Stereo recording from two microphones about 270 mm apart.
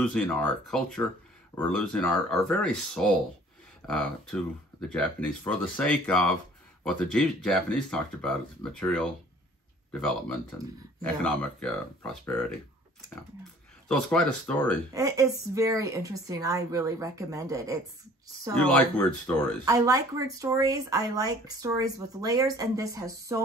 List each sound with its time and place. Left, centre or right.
0.0 s speech: centre
13.8 s speech: centre
15.0 s speech: centre
19.6 s speech: centre